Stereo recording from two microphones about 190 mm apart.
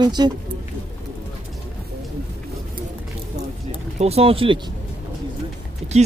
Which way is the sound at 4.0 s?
30° right (ahead or behind).